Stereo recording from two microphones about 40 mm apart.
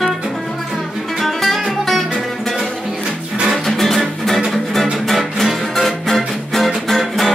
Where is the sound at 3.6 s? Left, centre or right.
Centre.